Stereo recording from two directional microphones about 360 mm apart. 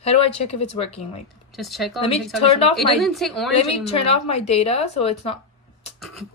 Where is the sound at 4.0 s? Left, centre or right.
Centre.